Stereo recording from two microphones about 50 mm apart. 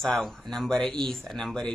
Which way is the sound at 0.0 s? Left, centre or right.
Centre.